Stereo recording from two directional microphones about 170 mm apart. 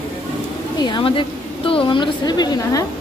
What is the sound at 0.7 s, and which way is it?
A woman's voice, 25° left (ahead or behind).